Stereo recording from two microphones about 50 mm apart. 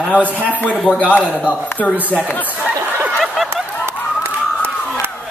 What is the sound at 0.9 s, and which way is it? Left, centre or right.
Speech, left.